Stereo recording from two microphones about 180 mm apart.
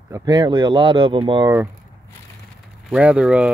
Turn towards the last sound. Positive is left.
turn(degrees=-5)  # may be behind; listen again after turning